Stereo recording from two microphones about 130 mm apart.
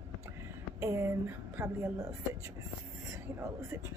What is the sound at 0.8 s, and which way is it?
A woman's voice, 20° right (ahead or behind).